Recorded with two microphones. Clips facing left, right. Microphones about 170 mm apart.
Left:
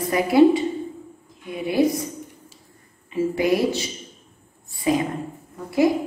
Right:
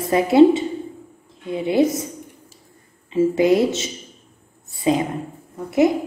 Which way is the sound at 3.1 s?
25° right (ahead or behind).